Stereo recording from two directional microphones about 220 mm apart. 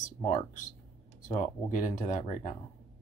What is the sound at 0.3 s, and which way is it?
Speech, 35° left (ahead or behind).